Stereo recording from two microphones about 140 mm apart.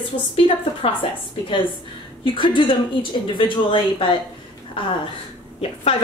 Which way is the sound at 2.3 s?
35° left (ahead or behind).